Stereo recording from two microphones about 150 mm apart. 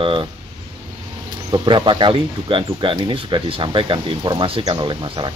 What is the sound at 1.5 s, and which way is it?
Speech, 35° right (ahead or behind).